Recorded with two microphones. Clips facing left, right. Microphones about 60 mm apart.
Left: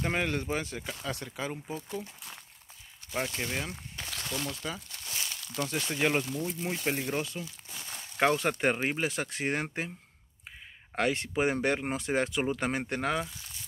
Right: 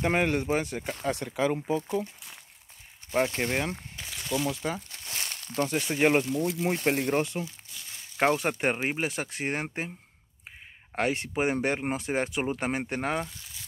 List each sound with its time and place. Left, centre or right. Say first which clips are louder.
0.0 s speech: right 5 dB; right
3.1 s speech: right 7 dB; right
3.9 s a sound: right 5 dB; centre
4.7 s crumpling: right 4 dB; right
5.1 s crumpling: right 4 dB; right
5.9 s speech: right 6 dB; right
7.7 s a sound: left 2 dB; left
8.2 s speech: right 1 dB; centre
9.1 s speech: even; centre
11.0 s speech: right 1 dB; centre